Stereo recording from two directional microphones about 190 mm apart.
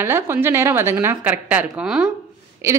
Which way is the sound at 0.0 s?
10° right (ahead or behind).